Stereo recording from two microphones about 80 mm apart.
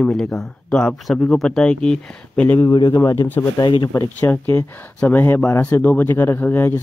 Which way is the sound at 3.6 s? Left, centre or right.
Left.